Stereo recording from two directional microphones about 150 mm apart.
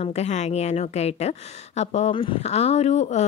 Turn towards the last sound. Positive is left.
turn(degrees=50)  # may be behind; listen again after turning